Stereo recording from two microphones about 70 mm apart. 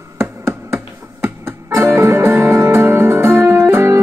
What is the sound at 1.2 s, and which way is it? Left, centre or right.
Music, right.